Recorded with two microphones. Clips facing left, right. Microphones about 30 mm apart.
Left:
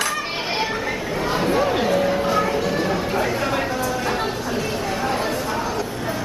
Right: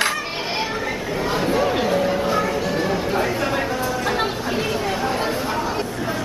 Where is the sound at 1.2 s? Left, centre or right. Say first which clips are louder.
Even; centre.